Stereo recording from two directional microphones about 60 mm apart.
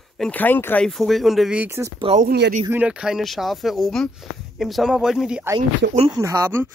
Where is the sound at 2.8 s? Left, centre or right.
Centre.